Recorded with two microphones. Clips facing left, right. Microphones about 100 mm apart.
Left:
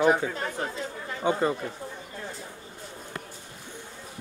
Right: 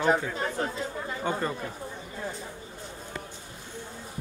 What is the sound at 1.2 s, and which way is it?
Speech, 15° left (ahead or behind).